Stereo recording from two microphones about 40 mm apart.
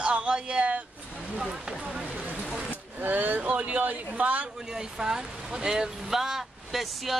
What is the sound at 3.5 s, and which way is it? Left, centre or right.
Speech, right.